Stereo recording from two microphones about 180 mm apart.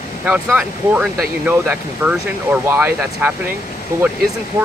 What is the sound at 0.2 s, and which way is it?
Speech, 5° right (ahead or behind).